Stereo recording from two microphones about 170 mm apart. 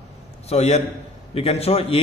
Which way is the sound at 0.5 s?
40° left (ahead or behind).